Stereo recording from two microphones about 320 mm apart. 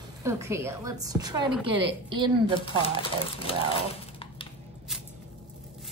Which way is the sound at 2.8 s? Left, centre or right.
Centre.